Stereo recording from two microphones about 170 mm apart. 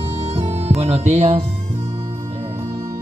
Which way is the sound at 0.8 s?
40° right (ahead or behind).